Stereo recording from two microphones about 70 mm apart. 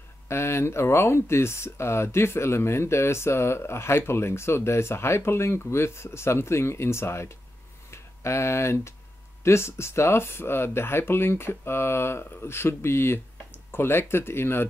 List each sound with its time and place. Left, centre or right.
0.3 s speech: left